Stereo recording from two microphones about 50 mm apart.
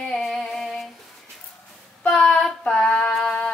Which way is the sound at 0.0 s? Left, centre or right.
Centre.